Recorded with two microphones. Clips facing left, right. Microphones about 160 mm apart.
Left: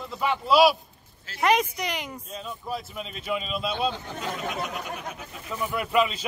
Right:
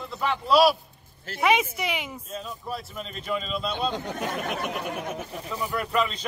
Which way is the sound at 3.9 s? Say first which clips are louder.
Right 3 dB; 60° right (ahead or behind).